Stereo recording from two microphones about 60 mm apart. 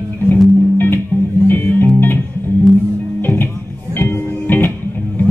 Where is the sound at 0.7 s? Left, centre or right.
Left.